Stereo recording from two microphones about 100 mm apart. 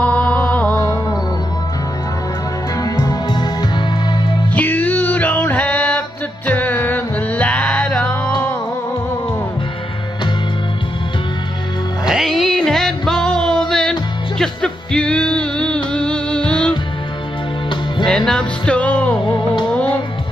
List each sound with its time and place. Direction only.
0.0 s music: 15° left (ahead or behind)
2.8 s music: 40° left (ahead or behind)
4.6 s music: 15° left (ahead or behind)
12.1 s music: centre (ahead or behind)
18.0 s music: 5° left (ahead or behind)
19.2 s music: 50° left (ahead or behind)